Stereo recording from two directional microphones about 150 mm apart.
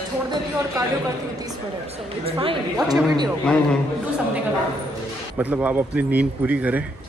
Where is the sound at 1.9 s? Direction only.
40° right (ahead or behind).